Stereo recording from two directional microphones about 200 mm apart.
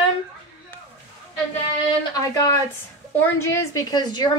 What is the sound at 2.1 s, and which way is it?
A woman's voice, 15° left (ahead or behind).